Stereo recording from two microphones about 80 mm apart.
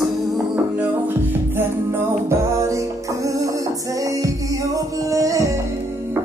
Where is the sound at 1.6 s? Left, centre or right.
Right.